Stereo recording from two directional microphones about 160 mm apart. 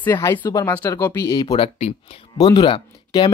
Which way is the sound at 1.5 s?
40° left (ahead or behind).